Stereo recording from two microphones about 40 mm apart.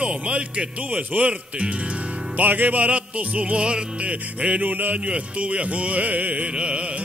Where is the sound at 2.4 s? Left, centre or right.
Right.